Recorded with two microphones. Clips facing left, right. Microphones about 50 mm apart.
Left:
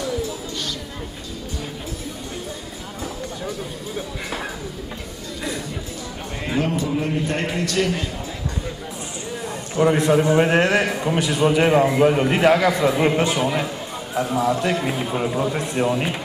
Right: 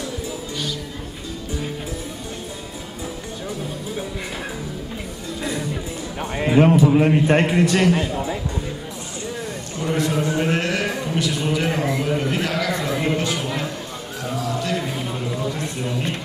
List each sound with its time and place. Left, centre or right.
6.3 s a sound: right
6.9 s a man's voice: right
7.4 s a man's voice: right
9.8 s a man's voice: left
15.7 s a man's voice: left